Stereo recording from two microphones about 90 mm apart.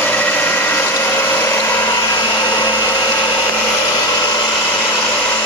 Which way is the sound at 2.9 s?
50° left (ahead or behind).